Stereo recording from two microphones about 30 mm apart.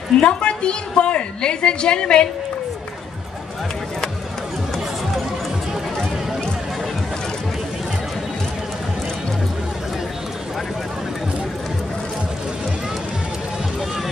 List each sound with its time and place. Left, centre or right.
0.2 s a woman's voice: left